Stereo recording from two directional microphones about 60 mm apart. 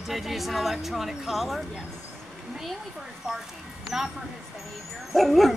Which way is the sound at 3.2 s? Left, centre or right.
Centre.